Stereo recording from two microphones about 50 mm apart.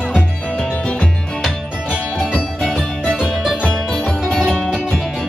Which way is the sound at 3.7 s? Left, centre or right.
Centre.